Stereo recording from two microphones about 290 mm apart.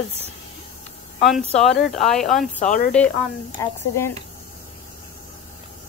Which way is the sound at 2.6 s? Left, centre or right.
Left.